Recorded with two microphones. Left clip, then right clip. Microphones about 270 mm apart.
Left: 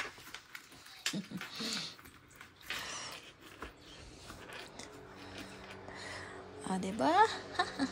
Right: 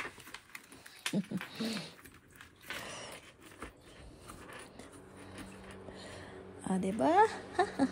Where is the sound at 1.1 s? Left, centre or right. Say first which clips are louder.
Right 3 dB; centre.